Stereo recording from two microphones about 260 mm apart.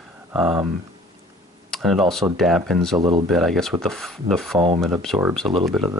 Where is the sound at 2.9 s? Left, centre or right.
Centre.